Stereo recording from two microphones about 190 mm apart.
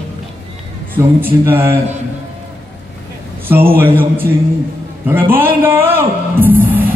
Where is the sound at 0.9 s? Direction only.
10° right (ahead or behind).